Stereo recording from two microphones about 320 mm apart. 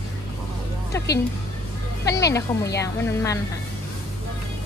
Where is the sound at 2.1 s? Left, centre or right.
Centre.